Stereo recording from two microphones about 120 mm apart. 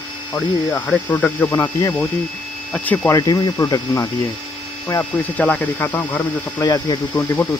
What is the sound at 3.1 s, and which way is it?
Speech, 35° left (ahead or behind).